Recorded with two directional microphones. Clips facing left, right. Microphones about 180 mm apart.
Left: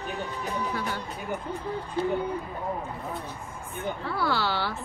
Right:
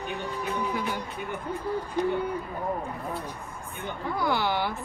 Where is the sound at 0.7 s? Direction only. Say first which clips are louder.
Right 1 dB; 15° right (ahead or behind).